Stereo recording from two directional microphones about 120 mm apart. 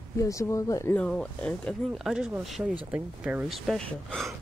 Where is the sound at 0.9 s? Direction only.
10° left (ahead or behind).